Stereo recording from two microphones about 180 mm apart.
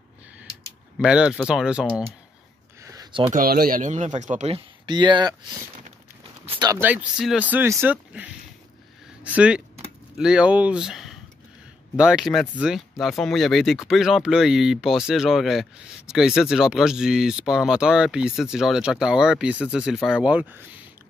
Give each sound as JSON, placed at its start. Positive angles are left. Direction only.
{"t": 0.9, "sound": "speech", "side_deg": -5}
{"t": 2.8, "sound": "a sound", "side_deg": -20}
{"t": 3.3, "sound": "speech", "side_deg": -55}
{"t": 4.8, "sound": "speech", "side_deg": -25}
{"t": 6.4, "sound": "a sound", "side_deg": -30}
{"t": 6.7, "sound": "speech", "side_deg": -10}